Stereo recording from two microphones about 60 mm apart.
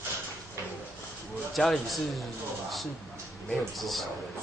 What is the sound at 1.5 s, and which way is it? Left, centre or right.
Speech, centre.